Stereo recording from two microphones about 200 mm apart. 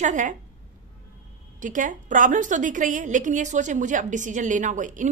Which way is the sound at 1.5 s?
40° right (ahead or behind).